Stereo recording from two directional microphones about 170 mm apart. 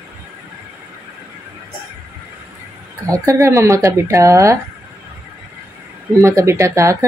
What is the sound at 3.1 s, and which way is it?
Speech, 15° right (ahead or behind).